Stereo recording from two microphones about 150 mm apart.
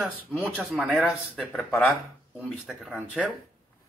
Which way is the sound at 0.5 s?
Centre (ahead or behind).